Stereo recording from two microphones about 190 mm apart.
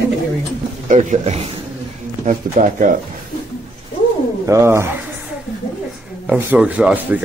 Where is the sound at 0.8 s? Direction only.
40° right (ahead or behind).